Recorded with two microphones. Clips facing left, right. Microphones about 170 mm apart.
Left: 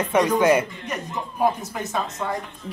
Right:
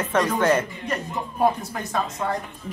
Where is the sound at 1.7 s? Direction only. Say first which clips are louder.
Even; 5° left (ahead or behind).